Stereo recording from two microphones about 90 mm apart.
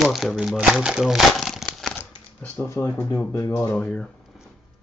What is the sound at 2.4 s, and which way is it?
Speech, 15° left (ahead or behind).